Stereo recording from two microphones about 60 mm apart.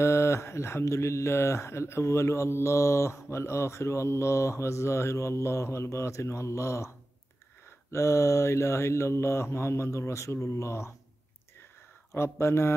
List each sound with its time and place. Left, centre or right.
0.0 s mantra: left
7.9 s mantra: left
12.1 s mantra: left